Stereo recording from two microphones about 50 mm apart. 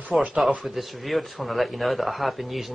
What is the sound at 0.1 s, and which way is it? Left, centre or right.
Speech, centre.